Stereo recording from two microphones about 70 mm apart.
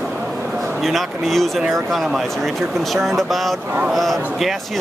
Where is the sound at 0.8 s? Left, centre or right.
Centre.